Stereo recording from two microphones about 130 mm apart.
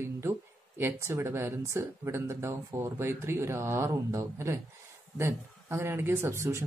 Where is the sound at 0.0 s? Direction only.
20° right (ahead or behind).